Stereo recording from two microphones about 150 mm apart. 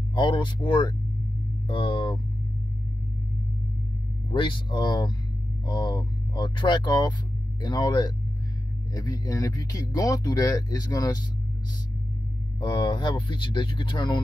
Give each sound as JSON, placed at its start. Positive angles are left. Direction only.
{"t": 0.1, "sound": "speech", "side_deg": 30}
{"t": 4.3, "sound": "speech", "side_deg": 30}
{"t": 12.5, "sound": "speech", "side_deg": 30}